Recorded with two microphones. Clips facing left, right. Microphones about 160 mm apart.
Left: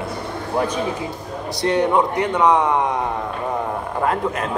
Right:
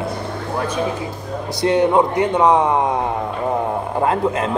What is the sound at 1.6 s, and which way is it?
A man's voice, 25° right (ahead or behind).